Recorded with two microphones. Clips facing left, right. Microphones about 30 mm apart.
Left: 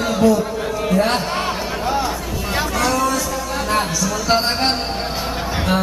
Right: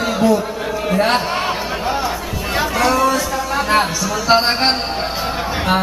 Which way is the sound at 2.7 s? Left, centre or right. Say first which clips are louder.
Right 4 dB; centre.